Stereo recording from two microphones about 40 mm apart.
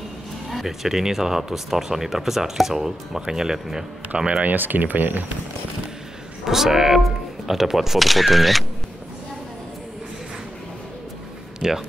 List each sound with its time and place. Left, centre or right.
0.5 s speech: centre
4.6 s speech: right
6.4 s speech: centre
11.6 s speech: centre